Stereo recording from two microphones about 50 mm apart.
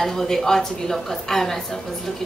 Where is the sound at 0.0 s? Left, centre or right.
Centre.